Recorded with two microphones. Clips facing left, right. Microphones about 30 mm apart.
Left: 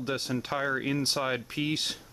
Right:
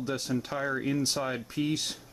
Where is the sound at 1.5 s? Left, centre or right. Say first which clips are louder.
Even; left.